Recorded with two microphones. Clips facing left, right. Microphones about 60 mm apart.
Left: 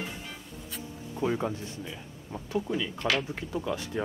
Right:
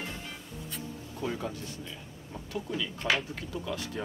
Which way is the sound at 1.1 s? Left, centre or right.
Left.